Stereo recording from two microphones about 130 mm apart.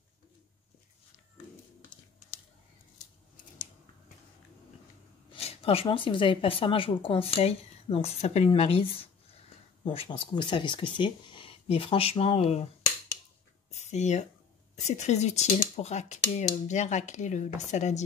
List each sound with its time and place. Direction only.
5.3 s a woman's voice: 50° left (ahead or behind)
8.5 s a woman's voice: 45° left (ahead or behind)
13.7 s a sound: 60° left (ahead or behind)
14.8 s speech: 60° left (ahead or behind)